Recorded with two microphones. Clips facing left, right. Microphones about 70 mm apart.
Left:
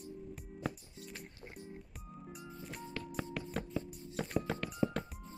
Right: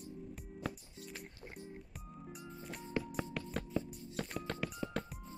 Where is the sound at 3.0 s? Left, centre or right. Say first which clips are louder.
Even; centre.